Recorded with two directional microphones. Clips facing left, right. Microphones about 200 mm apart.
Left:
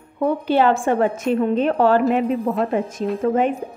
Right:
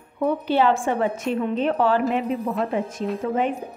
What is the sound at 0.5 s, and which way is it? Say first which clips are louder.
Speech: left 4 dB; 50° left (ahead or behind).